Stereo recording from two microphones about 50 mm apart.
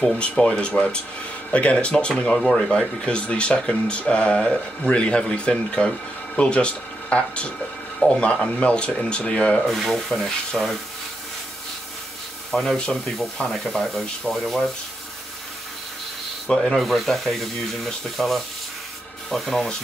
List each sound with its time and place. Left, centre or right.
0.2 s speech: left
2.3 s speech: centre
3.1 s speech: left
9.7 s speech: centre
10.6 s speech: centre
12.5 s speech: centre
13.5 s speech: centre
16.4 s rub: centre
16.7 s speech: centre